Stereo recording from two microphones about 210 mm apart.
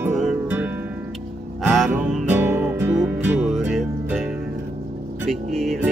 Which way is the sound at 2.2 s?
10° right (ahead or behind).